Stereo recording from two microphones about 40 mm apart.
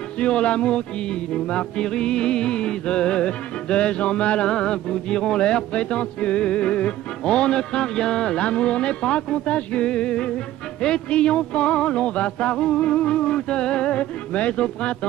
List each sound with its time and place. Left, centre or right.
0.2 s music: left